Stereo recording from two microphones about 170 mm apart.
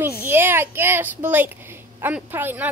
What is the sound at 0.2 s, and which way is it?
A child's voice, 15° right (ahead or behind).